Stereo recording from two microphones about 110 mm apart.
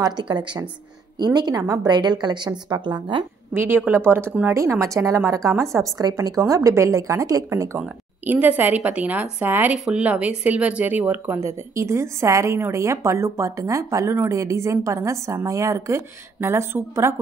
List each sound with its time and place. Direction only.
0.0 s a woman's voice: 40° right (ahead or behind)
3.5 s speech: 20° right (ahead or behind)
7.8 s a woman's voice: 15° right (ahead or behind)